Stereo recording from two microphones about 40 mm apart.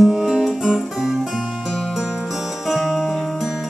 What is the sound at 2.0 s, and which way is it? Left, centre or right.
Music, centre.